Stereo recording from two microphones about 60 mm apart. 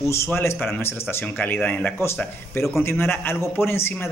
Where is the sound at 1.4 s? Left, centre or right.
Left.